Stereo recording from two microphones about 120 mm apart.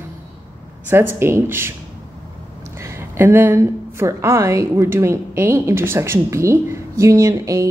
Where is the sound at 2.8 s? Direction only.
20° right (ahead or behind).